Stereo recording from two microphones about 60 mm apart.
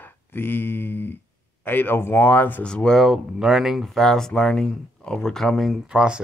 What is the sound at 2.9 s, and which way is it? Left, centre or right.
Speech, centre.